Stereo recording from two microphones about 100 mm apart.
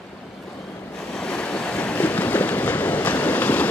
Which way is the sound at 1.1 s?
10° left (ahead or behind).